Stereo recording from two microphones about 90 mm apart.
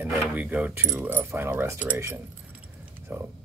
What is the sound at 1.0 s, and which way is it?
Speech, 25° right (ahead or behind).